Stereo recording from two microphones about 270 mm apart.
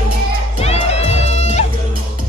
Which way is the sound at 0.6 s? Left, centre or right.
Left.